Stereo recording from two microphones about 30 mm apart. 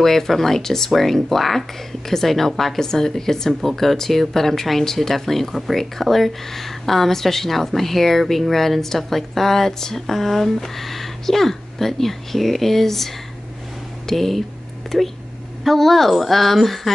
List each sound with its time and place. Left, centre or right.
0.0 s a woman's voice: centre